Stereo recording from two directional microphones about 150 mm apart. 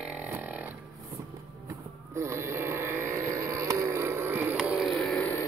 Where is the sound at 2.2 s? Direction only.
15° right (ahead or behind); by 5.3 s 10° left (ahead or behind).